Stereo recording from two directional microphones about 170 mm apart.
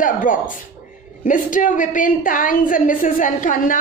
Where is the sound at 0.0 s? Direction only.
50° left (ahead or behind).